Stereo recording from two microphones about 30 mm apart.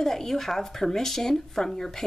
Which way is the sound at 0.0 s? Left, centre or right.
Centre.